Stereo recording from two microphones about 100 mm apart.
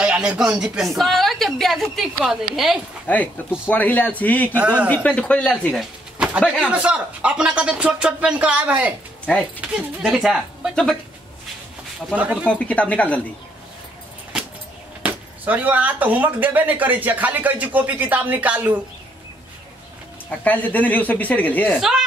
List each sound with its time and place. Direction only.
0.0 s a woman's voice: 10° right (ahead or behind)
3.1 s a woman's voice: 15° left (ahead or behind)
4.5 s speech: 15° right (ahead or behind)
4.8 s a woman's voice: 15° left (ahead or behind)
6.1 s a sound: 15° right (ahead or behind)
6.6 s speech: 10° right (ahead or behind)
10.0 s a woman's voice: 5° right (ahead or behind)
12.2 s speech: 15° right (ahead or behind)
12.4 s a woman's voice: 15° left (ahead or behind)
15.0 s speech: 15° right (ahead or behind)
20.2 s a woman's voice: 15° left (ahead or behind)
21.7 s a woman's voice: 5° right (ahead or behind)